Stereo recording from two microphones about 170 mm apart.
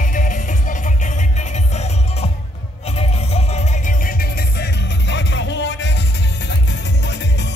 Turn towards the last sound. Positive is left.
turn(degrees=90)